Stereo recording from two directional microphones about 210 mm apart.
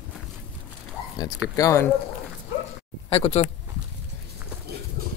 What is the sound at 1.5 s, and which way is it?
Speech, 15° left (ahead or behind).